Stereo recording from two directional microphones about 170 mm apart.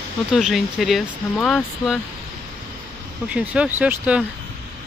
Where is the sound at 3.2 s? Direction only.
5° right (ahead or behind).